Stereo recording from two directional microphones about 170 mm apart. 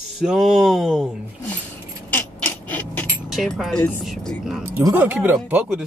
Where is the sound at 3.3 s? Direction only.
Centre (ahead or behind).